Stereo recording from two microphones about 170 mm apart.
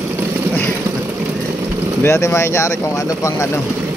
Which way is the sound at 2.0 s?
15° left (ahead or behind).